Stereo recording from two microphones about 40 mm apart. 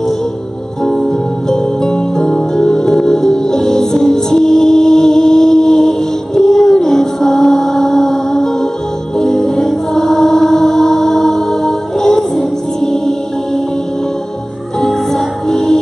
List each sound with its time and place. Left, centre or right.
0.8 s music: centre
14.8 s music: centre